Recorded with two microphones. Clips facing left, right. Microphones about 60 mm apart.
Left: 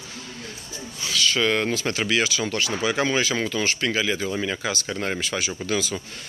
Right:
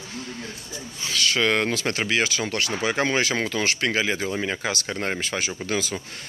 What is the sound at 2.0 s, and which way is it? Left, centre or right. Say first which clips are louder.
Speech: left 1 dB; right.